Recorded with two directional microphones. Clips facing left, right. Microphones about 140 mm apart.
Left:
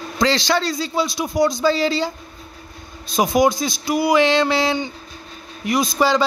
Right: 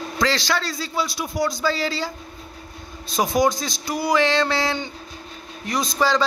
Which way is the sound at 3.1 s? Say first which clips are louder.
Left 3 dB; 15° left (ahead or behind).